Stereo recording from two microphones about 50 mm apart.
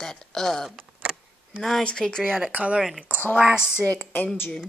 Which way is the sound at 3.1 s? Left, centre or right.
Right.